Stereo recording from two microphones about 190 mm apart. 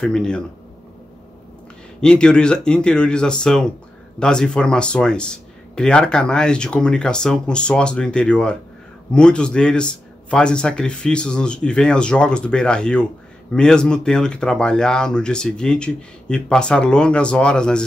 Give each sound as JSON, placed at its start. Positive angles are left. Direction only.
{"t": 0.0, "sound": "speech", "side_deg": 5}
{"t": 2.0, "sound": "speech", "side_deg": 5}